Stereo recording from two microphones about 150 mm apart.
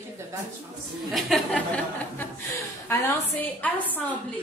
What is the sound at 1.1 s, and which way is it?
Speech, centre (ahead or behind).